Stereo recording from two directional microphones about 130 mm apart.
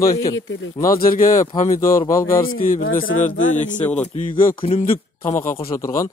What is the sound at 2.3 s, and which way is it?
Speech, 90° left.